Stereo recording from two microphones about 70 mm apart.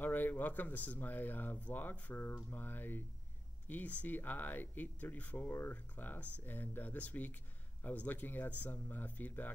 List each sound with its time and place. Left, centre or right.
0.0 s speech: left